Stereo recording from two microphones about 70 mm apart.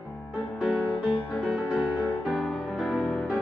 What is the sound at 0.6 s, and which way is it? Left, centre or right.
Music, centre.